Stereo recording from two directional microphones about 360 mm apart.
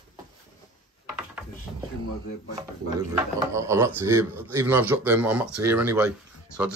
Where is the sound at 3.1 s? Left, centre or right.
Centre.